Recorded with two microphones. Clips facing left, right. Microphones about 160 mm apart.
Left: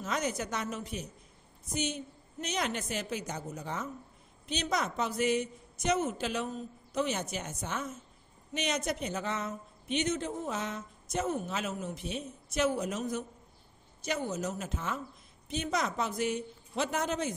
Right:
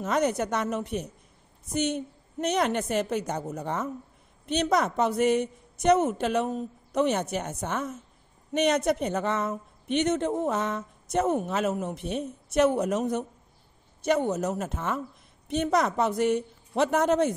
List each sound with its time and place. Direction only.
0.0 s a woman's voice: 60° right (ahead or behind)